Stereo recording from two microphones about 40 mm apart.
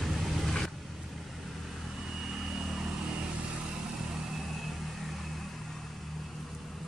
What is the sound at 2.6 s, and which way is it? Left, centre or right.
Vehicle, centre.